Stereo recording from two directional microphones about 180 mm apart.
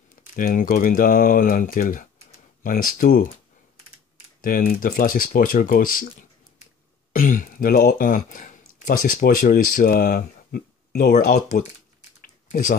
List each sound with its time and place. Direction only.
0.1 s speech: 50° left (ahead or behind)
4.4 s speech: 50° left (ahead or behind)
7.1 s speech: 45° left (ahead or behind)
12.2 s typing: 45° left (ahead or behind)